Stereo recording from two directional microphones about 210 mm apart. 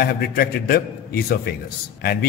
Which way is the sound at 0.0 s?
45° left (ahead or behind).